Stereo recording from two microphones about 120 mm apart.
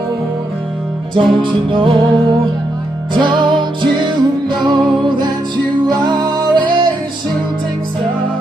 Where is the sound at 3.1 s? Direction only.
40° right (ahead or behind).